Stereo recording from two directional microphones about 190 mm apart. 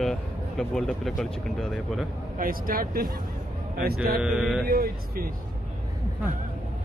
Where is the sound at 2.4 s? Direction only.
50° right (ahead or behind).